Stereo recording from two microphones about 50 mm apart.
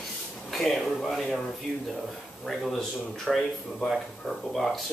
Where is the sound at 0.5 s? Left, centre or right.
Centre.